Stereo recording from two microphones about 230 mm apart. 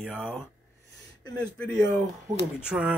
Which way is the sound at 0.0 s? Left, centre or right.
Centre.